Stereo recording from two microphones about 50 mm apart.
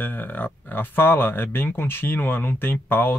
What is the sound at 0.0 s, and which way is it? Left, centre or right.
Speech, left.